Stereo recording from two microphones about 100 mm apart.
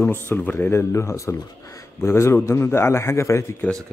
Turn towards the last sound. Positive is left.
turn(degrees=30)  # may be behind; listen again after turning